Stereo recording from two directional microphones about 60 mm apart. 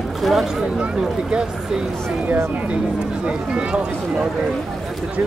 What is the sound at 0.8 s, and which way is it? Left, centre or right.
Speech, centre.